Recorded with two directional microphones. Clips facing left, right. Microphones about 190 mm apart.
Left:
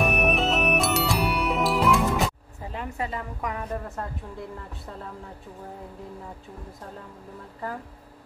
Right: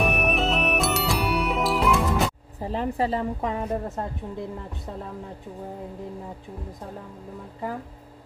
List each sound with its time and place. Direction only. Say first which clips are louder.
0.0 s music: even; centre (ahead or behind)
2.6 s a woman's voice: right 7 dB; 35° right (ahead or behind)